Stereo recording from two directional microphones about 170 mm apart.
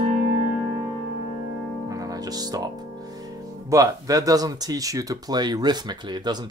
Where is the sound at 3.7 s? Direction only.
20° right (ahead or behind).